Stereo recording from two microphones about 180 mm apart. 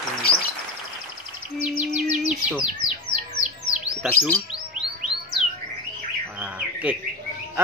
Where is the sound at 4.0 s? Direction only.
10° left (ahead or behind).